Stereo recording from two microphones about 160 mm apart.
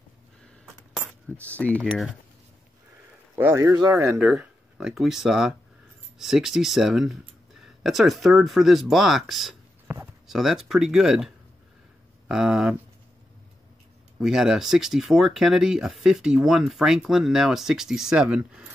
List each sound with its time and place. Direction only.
0.9 s speech: 10° left (ahead or behind)
1.9 s speech: 5° right (ahead or behind)
3.3 s speech: 15° right (ahead or behind)
4.3 s speech: 5° right (ahead or behind)
14.2 s speech: centre (ahead or behind)